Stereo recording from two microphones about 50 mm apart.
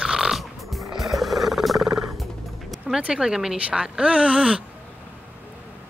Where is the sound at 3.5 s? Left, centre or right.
Right.